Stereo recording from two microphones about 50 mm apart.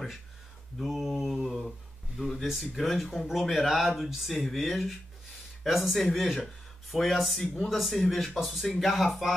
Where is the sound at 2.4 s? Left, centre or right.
Centre.